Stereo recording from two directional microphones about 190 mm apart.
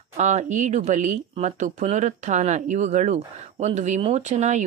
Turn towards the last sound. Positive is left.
turn(degrees=-35)  # may be behind; listen again after turning